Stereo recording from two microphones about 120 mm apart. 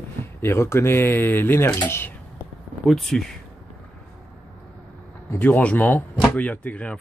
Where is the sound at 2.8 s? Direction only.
Centre (ahead or behind).